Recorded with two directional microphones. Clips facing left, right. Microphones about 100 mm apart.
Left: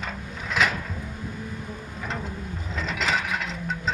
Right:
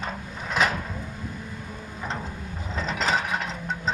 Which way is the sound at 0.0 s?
35° right (ahead or behind).